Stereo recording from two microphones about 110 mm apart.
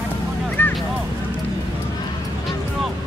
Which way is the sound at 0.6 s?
20° left (ahead or behind).